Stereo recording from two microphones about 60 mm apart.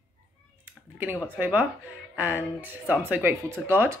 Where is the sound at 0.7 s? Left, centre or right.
Right.